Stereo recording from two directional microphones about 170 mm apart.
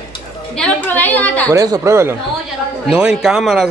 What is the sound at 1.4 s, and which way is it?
Speech, 20° right (ahead or behind).